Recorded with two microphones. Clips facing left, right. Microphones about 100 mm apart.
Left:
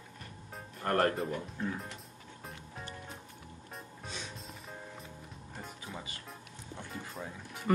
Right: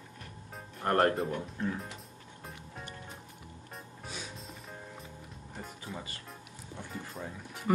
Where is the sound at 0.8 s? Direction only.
25° right (ahead or behind).